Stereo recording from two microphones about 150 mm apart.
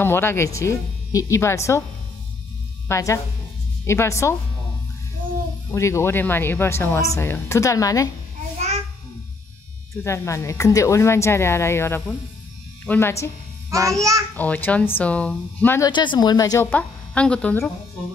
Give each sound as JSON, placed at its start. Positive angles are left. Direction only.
{"t": 0.0, "sound": "speech", "side_deg": 15}
{"t": 2.9, "sound": "speech", "side_deg": 20}
{"t": 5.7, "sound": "speech", "side_deg": 20}
{"t": 8.5, "sound": "a sound", "side_deg": -50}
{"t": 10.0, "sound": "speech", "side_deg": 20}
{"t": 13.7, "sound": "a child's voice", "side_deg": -20}
{"t": 14.3, "sound": "speech", "side_deg": 10}
{"t": 15.9, "sound": "speech", "side_deg": 30}
{"t": 16.7, "sound": "speech", "side_deg": 10}